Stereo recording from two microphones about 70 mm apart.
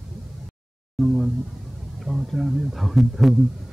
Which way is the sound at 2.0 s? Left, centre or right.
Centre.